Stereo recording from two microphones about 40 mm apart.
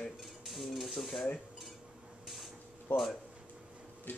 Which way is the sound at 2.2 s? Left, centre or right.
Centre.